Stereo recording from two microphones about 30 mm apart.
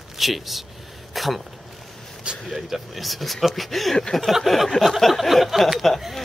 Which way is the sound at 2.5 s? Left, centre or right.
Centre.